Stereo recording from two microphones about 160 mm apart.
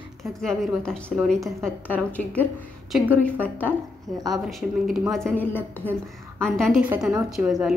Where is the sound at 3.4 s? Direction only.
10° left (ahead or behind).